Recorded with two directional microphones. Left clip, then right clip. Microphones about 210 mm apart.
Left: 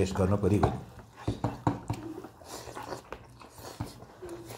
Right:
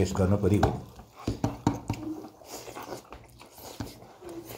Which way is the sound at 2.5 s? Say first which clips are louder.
Even; 10° right (ahead or behind).